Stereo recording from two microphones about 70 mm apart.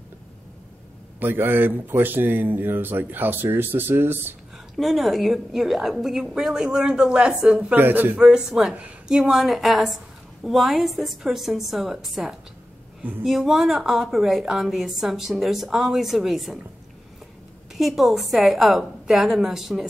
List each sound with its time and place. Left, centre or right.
1.2 s speech: right
4.7 s a woman's voice: centre
7.7 s speech: right
8.2 s a woman's voice: centre
17.7 s a woman's voice: centre